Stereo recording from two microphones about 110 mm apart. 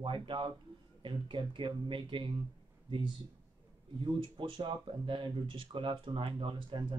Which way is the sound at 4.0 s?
50° right (ahead or behind).